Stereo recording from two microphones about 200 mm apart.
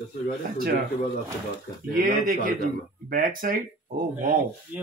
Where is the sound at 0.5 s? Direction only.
50° right (ahead or behind).